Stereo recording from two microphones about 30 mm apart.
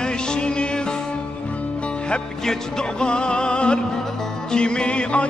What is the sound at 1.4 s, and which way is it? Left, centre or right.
Music, left.